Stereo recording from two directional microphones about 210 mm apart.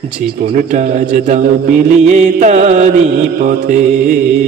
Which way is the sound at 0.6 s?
35° right (ahead or behind).